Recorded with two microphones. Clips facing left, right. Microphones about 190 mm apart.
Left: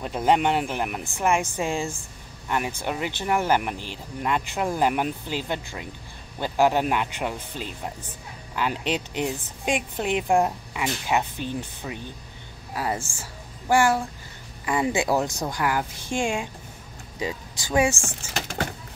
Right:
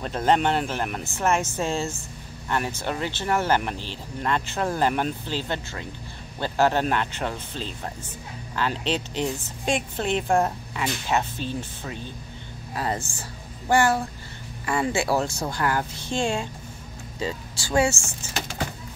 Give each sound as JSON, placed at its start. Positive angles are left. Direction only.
{"t": 0.0, "sound": "speech", "side_deg": 10}